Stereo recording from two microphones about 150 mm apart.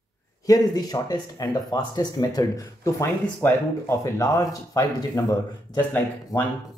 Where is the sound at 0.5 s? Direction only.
25° left (ahead or behind).